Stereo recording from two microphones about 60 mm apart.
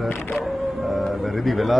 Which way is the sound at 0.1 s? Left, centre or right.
Left.